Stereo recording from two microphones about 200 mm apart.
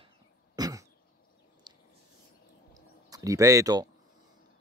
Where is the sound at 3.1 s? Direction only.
15° right (ahead or behind).